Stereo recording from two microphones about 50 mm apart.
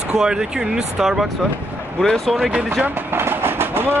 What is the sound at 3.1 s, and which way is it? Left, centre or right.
Train, right.